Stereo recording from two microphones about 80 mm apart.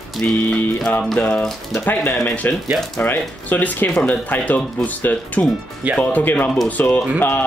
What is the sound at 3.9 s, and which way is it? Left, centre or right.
Speech, centre.